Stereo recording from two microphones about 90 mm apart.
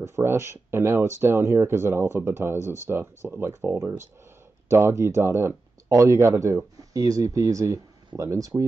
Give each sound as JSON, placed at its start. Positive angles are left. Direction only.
{"t": 0.0, "sound": "speech", "side_deg": -30}